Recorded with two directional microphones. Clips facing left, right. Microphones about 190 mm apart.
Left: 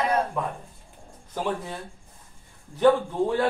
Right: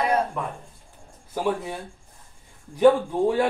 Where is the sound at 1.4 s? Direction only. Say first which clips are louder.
Right 4 dB; 10° right (ahead or behind).